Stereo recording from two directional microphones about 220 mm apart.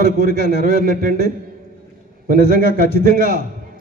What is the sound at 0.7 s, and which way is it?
Speech, 35° right (ahead or behind).